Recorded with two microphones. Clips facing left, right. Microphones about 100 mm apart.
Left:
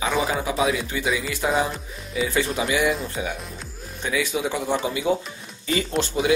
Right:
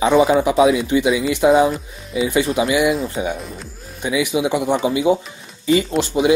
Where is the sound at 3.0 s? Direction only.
20° right (ahead or behind).